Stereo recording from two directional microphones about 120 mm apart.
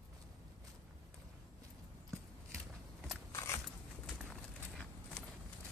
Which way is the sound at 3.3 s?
25° left (ahead or behind).